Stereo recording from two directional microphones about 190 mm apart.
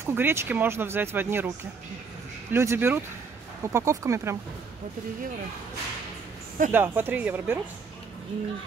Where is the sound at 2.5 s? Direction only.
15° right (ahead or behind).